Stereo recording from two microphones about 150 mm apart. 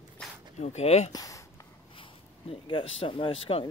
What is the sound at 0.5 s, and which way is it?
Speech, 45° left (ahead or behind).